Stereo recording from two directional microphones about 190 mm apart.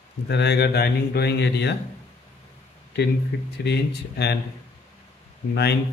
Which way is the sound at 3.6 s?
60° left (ahead or behind).